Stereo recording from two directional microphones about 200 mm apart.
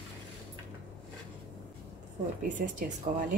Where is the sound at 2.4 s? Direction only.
40° right (ahead or behind).